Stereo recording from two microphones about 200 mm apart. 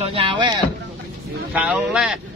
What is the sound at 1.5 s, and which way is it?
Speech, 5° right (ahead or behind).